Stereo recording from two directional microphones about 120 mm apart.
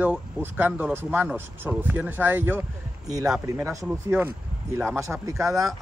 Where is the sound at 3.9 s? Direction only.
15° right (ahead or behind).